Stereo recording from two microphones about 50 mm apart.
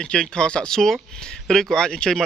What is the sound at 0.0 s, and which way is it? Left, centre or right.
Speech, centre.